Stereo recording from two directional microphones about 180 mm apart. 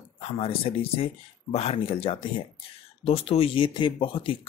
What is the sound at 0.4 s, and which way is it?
Speech, 30° left (ahead or behind).